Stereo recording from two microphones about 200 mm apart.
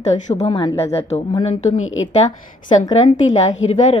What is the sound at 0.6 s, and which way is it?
A woman's voice, 20° left (ahead or behind).